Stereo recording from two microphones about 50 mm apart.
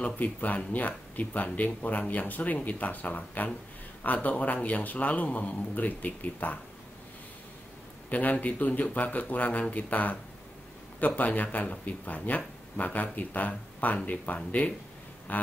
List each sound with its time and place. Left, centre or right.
0.0 s speech: left
8.1 s speech: left